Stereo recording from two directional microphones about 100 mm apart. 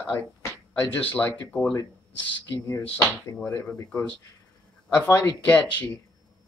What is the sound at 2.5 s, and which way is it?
Speech, 30° left (ahead or behind).